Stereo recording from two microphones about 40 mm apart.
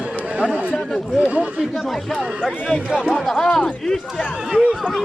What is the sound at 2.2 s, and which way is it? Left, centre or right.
Speech, right.